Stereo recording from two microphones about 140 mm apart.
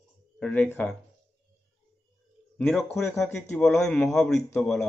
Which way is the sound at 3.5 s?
5° left (ahead or behind).